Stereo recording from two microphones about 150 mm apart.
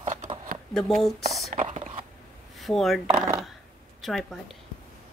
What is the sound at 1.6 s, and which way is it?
Whispering, 45° right (ahead or behind).